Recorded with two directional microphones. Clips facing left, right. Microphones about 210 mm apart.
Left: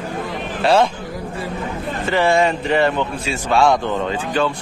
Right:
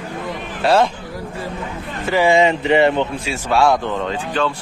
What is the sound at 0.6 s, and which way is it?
Speech, centre (ahead or behind).